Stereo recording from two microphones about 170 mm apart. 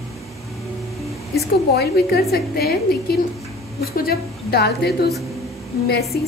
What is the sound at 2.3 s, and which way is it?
A woman's voice, 65° left (ahead or behind).